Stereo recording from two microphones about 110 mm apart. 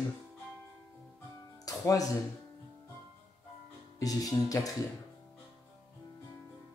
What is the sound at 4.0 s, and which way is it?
Speech, 35° left (ahead or behind).